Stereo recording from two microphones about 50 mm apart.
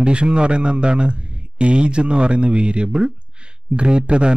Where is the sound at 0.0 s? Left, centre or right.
Right.